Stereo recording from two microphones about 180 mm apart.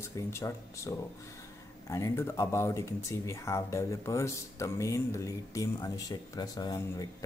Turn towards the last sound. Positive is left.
turn(degrees=20)  # may be behind; listen again after turning